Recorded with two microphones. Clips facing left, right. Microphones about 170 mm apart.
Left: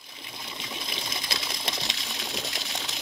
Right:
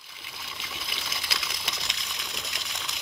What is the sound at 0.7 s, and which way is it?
Sewing machine, 25° left (ahead or behind).